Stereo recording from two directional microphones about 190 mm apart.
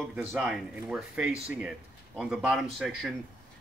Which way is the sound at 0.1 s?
5° right (ahead or behind).